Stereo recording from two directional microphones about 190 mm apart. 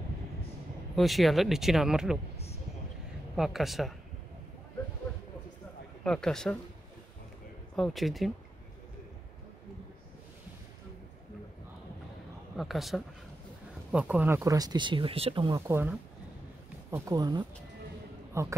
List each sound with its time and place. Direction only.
0.9 s speech: centre (ahead or behind)
2.3 s a sound: 35° left (ahead or behind)
3.3 s speech: centre (ahead or behind)
6.0 s speech: 5° left (ahead or behind)
7.7 s speech: centre (ahead or behind)
12.5 s speech: centre (ahead or behind); by 15.4 s 30° right (ahead or behind)
15.4 s speech: 15° right (ahead or behind)